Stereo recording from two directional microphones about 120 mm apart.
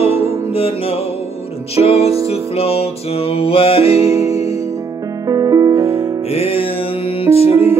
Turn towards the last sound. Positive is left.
turn(degrees=-20)  # may be behind; listen again after turning